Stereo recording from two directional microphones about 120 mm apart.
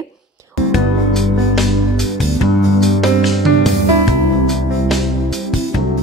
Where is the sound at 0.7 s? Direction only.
Centre (ahead or behind).